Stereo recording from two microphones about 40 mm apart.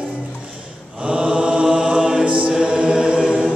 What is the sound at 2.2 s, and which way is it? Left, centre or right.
Chant, right.